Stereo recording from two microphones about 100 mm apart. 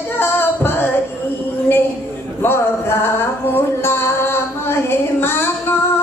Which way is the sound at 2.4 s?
20° left (ahead or behind).